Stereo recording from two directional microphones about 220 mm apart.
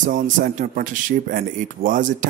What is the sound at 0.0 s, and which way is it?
Speech, 35° right (ahead or behind).